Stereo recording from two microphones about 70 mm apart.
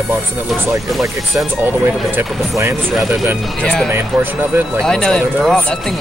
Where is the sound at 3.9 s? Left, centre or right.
Right.